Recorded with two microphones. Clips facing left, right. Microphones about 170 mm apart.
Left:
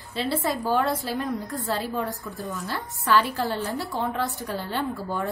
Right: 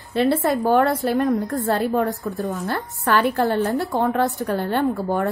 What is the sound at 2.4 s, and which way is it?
Speech, 40° right (ahead or behind).